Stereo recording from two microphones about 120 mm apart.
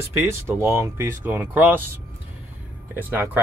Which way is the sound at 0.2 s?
20° right (ahead or behind).